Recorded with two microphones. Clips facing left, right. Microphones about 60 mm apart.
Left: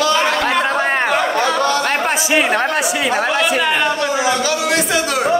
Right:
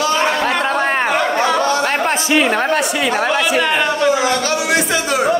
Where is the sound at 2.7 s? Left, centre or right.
Centre.